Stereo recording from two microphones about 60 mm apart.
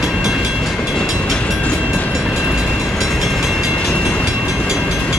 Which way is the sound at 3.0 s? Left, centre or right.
Centre.